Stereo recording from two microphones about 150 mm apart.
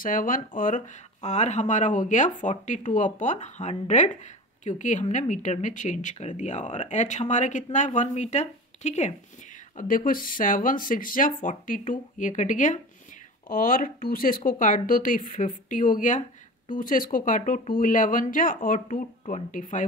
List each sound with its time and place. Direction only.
0.0 s speech: 65° left (ahead or behind); by 9.1 s 50° left (ahead or behind)
9.8 s speech: 65° left (ahead or behind)
13.5 s speech: 70° left (ahead or behind)